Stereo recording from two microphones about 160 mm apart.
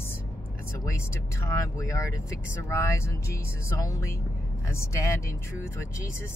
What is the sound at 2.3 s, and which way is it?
Speech, 15° left (ahead or behind).